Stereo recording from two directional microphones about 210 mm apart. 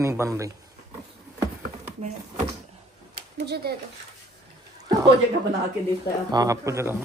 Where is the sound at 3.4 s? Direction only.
50° right (ahead or behind).